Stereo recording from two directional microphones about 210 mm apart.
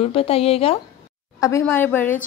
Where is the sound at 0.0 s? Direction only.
30° left (ahead or behind).